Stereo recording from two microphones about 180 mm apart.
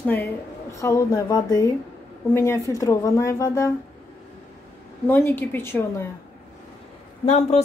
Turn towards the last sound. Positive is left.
turn(degrees=35)  # may be behind; listen again after turning